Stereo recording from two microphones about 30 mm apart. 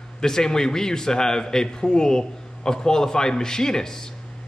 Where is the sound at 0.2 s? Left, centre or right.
Centre.